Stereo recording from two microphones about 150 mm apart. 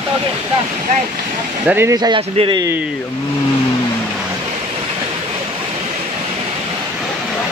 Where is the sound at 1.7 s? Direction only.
15° right (ahead or behind); by 2.6 s 35° right (ahead or behind).